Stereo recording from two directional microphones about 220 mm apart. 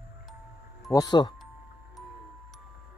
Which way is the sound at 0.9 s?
15° left (ahead or behind).